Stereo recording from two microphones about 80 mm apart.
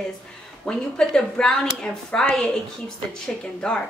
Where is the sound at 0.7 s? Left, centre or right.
Centre.